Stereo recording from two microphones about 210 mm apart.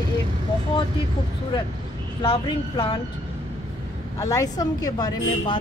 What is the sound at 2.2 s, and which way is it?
Speech, 25° left (ahead or behind).